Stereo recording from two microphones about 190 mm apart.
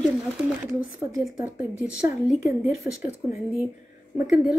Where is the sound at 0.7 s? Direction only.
5° right (ahead or behind).